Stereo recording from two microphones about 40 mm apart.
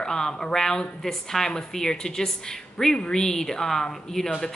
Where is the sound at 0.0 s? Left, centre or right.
Centre.